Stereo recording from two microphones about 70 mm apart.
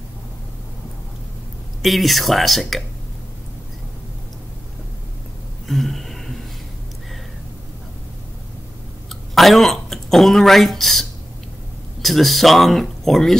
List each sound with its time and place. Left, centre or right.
1.8 s speech: centre
5.7 s a sound: centre
9.1 s speech: centre